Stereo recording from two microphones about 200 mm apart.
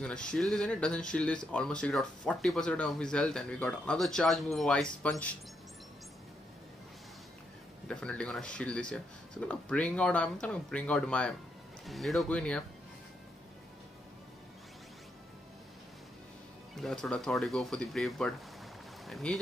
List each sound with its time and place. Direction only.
0.0 s speech: 5° left (ahead or behind)
7.9 s speech: 5° left (ahead or behind)
16.7 s speech: centre (ahead or behind)